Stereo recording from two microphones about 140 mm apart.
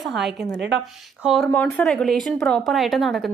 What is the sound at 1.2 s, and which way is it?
Speech, centre (ahead or behind).